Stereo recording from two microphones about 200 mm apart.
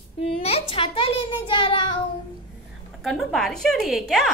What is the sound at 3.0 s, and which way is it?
A woman's voice, centre (ahead or behind).